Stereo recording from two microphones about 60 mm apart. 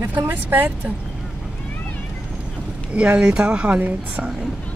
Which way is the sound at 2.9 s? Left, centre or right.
Right.